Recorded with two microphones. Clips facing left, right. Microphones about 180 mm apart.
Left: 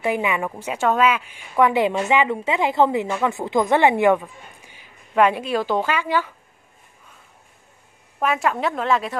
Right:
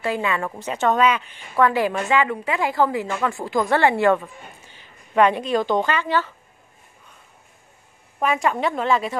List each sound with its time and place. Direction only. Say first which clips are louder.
0.0 s a woman's voice: left 2 dB; 15° left (ahead or behind)
1.7 s a woman's voice: left 2 dB; 20° left (ahead or behind)
8.2 s a woman's voice: even; centre (ahead or behind)